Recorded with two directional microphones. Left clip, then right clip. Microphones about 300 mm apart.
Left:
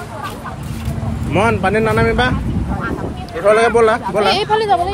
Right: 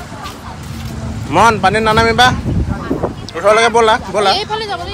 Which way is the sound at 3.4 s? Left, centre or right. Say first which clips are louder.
Right 2 dB; centre.